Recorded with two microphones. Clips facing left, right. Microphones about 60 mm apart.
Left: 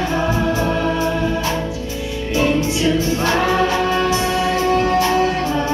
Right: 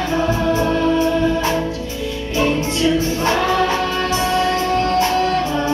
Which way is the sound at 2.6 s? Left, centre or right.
Centre.